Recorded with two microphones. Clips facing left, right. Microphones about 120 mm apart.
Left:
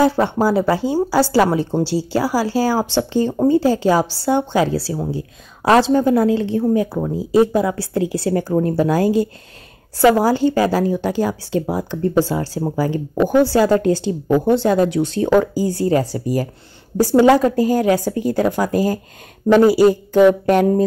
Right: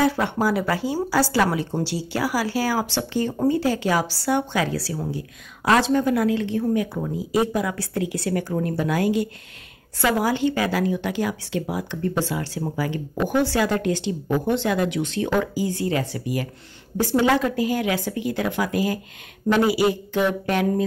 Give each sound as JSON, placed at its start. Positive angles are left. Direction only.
{"t": 0.0, "sound": "a woman's voice", "side_deg": 30}